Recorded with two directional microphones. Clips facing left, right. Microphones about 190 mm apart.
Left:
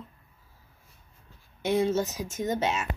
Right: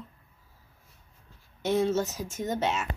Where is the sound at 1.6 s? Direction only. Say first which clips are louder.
Even; 15° left (ahead or behind).